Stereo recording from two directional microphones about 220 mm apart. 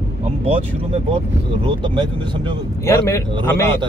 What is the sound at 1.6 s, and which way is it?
Speech, 20° right (ahead or behind).